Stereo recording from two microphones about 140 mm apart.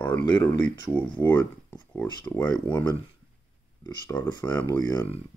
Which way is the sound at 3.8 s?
25° left (ahead or behind).